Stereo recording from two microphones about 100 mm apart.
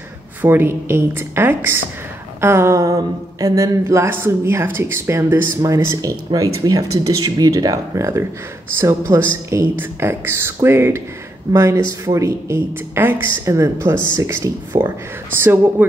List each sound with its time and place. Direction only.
0.4 s speech: 20° right (ahead or behind)
6.0 s speech: 35° right (ahead or behind); by 15.7 s 20° right (ahead or behind)